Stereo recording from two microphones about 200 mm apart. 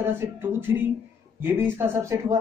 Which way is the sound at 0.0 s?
10° right (ahead or behind).